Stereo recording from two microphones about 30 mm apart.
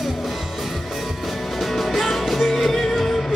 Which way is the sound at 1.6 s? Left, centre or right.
Centre.